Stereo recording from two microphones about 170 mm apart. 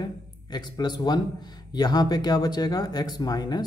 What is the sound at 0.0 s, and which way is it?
A man's voice, 25° left (ahead or behind).